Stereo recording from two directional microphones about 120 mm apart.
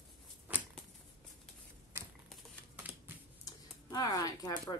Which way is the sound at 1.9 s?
20° right (ahead or behind).